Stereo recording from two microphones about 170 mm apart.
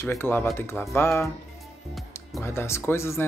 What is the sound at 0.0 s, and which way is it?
Speech, 15° left (ahead or behind).